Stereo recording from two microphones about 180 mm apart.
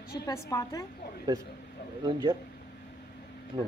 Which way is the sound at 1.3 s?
20° right (ahead or behind).